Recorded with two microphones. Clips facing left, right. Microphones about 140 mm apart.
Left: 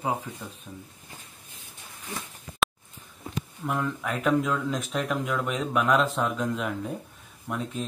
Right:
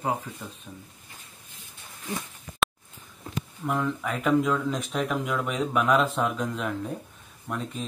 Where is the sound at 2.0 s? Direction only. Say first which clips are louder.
Right 4 dB; centre (ahead or behind).